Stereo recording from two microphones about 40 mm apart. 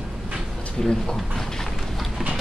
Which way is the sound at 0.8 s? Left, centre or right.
Centre.